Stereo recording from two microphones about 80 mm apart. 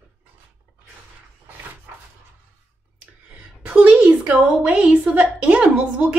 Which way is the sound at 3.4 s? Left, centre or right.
Centre.